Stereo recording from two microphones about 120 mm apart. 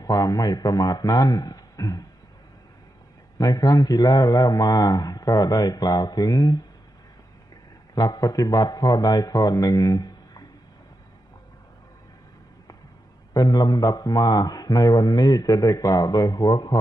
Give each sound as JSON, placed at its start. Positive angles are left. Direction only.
{"t": 0.0, "sound": "a man's voice", "side_deg": 30}
{"t": 3.3, "sound": "a man's voice", "side_deg": 30}
{"t": 7.9, "sound": "a man's voice", "side_deg": 30}
{"t": 13.3, "sound": "a man's voice", "side_deg": 35}